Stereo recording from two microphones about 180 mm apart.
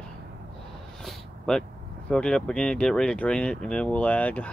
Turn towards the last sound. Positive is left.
turn(degrees=10)  # may be behind; listen again after turning